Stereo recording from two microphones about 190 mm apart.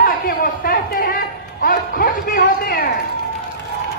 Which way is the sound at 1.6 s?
50° left (ahead or behind).